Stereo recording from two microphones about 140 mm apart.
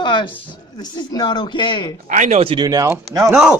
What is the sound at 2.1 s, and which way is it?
Speech, 65° right (ahead or behind).